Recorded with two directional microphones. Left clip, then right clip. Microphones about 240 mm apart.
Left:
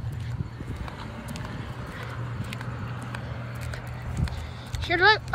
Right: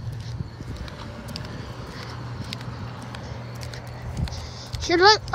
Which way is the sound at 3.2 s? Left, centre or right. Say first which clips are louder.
Right 1 dB; right.